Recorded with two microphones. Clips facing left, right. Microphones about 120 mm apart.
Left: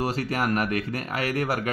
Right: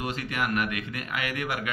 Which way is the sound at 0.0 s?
35° left (ahead or behind).